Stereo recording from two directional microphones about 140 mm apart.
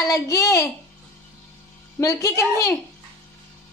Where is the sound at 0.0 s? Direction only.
20° left (ahead or behind).